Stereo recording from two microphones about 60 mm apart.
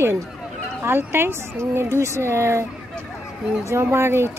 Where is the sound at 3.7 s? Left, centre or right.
Right.